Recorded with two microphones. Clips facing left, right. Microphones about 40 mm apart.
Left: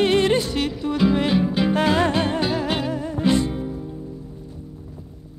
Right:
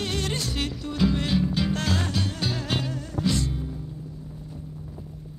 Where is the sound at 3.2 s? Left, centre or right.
Left.